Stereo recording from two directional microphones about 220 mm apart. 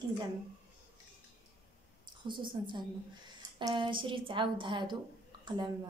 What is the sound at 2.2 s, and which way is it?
A woman's voice, 20° right (ahead or behind).